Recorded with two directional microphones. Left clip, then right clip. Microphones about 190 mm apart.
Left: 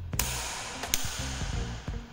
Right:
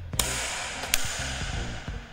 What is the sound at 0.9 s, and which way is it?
Music, 40° left (ahead or behind).